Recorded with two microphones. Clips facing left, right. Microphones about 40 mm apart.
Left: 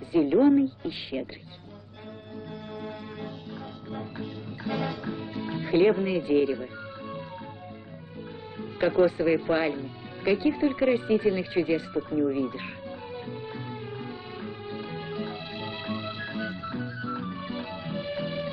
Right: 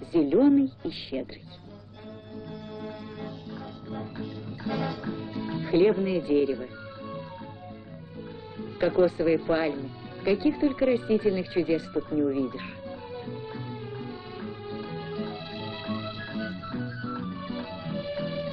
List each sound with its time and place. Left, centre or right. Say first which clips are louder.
0.1 s speech: even; left
3.9 s music: even; centre
5.9 s speech: even; left
8.7 s speech: even; left
12.1 s music: even; centre